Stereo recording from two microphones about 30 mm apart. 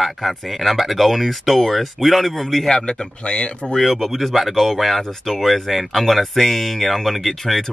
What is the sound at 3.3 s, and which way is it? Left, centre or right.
Speech, left.